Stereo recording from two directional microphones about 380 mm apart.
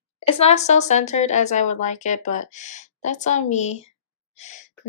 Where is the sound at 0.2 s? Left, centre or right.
Centre.